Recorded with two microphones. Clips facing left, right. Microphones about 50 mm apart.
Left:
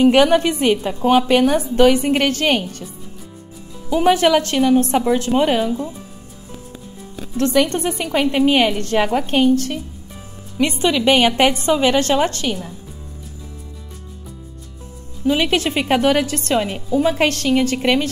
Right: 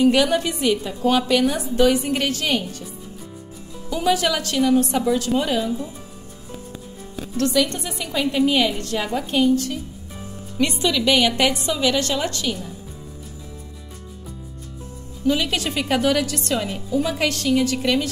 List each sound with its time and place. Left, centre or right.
0.0 s a woman's voice: left
4.0 s a woman's voice: left
7.4 s a woman's voice: left
10.7 s a woman's voice: left
15.3 s a woman's voice: left